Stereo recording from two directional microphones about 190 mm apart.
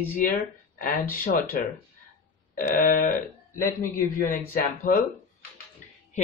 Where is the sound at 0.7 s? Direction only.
45° left (ahead or behind).